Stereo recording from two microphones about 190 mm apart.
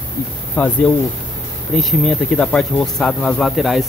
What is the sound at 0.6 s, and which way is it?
Speech, 10° left (ahead or behind).